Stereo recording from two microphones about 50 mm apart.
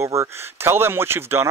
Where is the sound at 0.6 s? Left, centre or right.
Right.